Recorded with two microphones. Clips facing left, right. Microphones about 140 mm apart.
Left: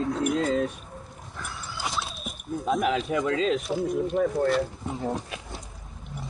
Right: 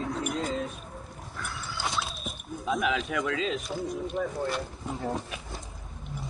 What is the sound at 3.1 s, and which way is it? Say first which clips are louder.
Speech: left 4 dB; 30° left (ahead or behind).